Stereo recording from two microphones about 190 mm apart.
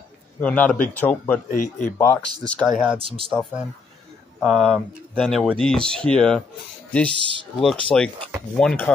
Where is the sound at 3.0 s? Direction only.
30° right (ahead or behind).